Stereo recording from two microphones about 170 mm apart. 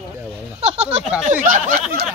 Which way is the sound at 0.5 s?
40° right (ahead or behind).